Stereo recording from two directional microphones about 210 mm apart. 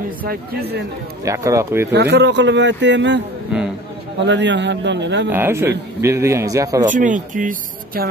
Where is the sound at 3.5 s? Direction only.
5° right (ahead or behind).